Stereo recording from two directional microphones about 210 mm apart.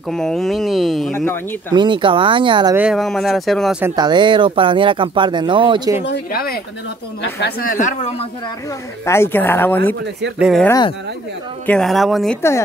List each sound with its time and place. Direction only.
0.1 s a woman's voice: 5° left (ahead or behind)
1.7 s speech: 20° right (ahead or behind)
2.7 s speech: 5° right (ahead or behind)
3.8 s speech: 20° right (ahead or behind)
6.0 s a woman's voice: 50° left (ahead or behind)
9.0 s a woman's voice: 10° left (ahead or behind)
12.4 s a woman's voice: 15° left (ahead or behind)